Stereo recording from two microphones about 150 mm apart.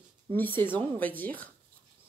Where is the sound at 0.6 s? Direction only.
10° left (ahead or behind).